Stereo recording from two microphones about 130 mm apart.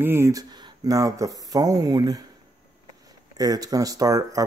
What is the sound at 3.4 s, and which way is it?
Speech, 30° right (ahead or behind).